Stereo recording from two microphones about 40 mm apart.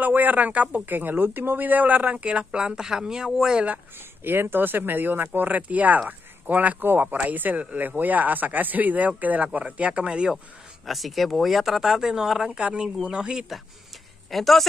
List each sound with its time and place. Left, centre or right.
0.0 s speech: right
2.5 s speech: centre
4.2 s speech: right
5.5 s speech: right
6.8 s speech: right
10.9 s speech: centre
12.5 s speech: right
14.3 s speech: centre